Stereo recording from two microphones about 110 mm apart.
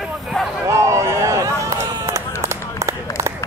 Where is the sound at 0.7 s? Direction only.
25° right (ahead or behind).